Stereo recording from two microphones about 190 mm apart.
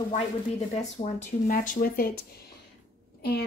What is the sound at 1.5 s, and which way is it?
Speech, 45° left (ahead or behind).